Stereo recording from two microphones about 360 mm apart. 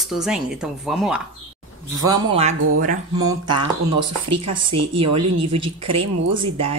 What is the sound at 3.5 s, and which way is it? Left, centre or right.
Speech, right.